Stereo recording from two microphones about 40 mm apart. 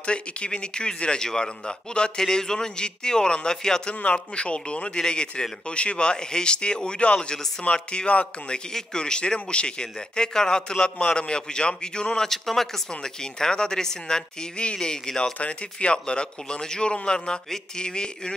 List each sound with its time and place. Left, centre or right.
0.0 s speech: left
3.9 s speech: left
12.3 s speech: centre
15.3 s speech: left